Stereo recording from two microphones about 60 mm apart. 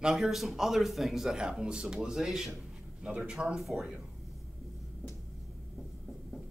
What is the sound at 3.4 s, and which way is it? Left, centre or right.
Speech, centre.